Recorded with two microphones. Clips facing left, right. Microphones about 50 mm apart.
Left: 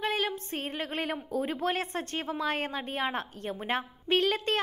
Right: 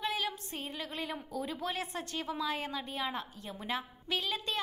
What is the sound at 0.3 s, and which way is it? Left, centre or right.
A woman's voice, left.